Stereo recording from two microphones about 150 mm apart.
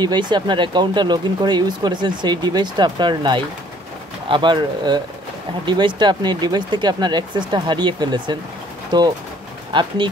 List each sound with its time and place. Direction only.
0.0 s speech: 30° right (ahead or behind)